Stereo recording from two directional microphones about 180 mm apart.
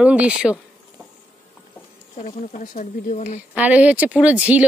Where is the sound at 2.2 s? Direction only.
45° left (ahead or behind).